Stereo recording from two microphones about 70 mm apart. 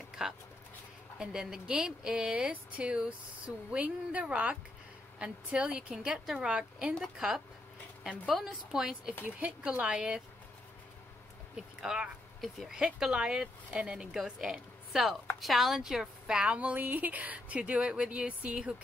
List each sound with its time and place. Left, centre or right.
1.1 s speech: centre
8.5 s speech: centre
11.5 s speech: centre
12.8 s speech: centre